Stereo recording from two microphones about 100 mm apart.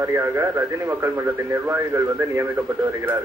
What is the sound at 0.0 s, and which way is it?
Speech, 25° right (ahead or behind).